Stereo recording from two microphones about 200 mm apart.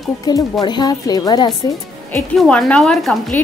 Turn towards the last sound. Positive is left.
turn(degrees=0)  # may be behind; listen again after turning